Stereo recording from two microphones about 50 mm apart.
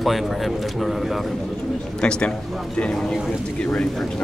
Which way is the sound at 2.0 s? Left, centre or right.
Centre.